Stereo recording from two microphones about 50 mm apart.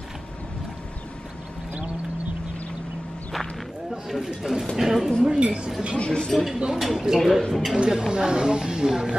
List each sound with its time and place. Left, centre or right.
4.1 s speech: centre
5.9 s speech: centre
6.3 s speech: centre
7.8 s speech: centre